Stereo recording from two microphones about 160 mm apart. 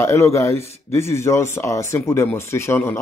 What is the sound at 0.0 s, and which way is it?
Speech, 20° left (ahead or behind).